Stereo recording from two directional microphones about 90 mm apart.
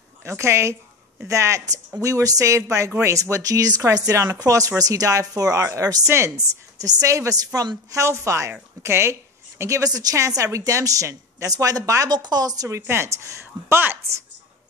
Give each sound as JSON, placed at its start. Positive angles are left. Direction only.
{"t": 0.2, "sound": "a woman's voice", "side_deg": -30}
{"t": 12.1, "sound": "speech", "side_deg": -50}